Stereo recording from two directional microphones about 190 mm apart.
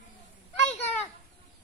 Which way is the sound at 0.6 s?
35° left (ahead or behind).